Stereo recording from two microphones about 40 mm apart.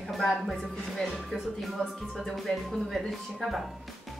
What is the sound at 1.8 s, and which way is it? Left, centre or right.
Music, left.